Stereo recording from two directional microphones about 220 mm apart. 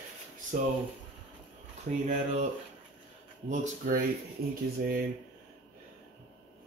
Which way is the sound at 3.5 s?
35° right (ahead or behind).